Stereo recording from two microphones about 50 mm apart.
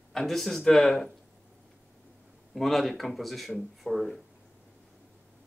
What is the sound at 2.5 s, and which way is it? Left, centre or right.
Speech, centre.